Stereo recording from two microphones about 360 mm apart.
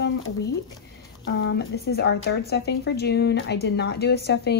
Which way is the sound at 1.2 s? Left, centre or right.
Left.